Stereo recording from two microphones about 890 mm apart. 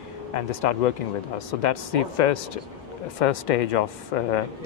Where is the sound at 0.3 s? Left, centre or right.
Left.